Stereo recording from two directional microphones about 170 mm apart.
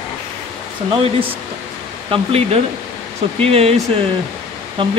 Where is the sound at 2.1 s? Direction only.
35° right (ahead or behind).